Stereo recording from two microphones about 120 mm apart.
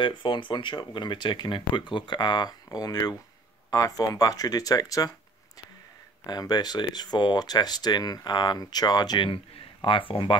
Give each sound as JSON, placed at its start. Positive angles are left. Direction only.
{"t": 0.0, "sound": "speech", "side_deg": 40}
{"t": 6.2, "sound": "speech", "side_deg": 35}